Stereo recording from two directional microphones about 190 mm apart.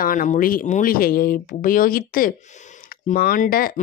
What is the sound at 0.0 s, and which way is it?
Speech, 45° left (ahead or behind).